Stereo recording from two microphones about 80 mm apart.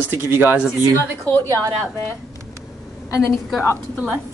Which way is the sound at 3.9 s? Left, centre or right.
Centre.